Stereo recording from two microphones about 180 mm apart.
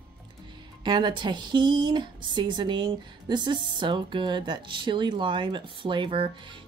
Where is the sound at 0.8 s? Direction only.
25° right (ahead or behind).